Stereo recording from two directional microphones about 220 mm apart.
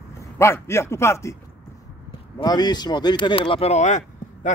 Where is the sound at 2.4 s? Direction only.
20° left (ahead or behind).